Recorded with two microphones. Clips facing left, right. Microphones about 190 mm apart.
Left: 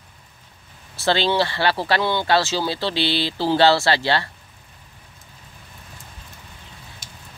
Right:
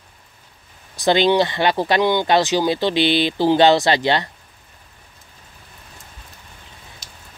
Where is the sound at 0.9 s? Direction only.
15° right (ahead or behind).